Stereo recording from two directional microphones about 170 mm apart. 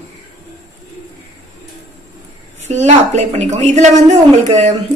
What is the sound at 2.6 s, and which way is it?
A woman's voice, 40° right (ahead or behind).